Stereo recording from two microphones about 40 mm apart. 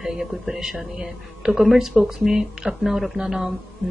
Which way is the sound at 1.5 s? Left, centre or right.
Centre.